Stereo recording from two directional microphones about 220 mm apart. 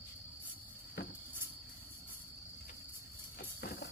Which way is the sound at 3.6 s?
45° left (ahead or behind).